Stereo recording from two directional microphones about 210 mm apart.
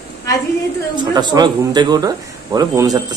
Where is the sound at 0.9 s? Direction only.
20° right (ahead or behind).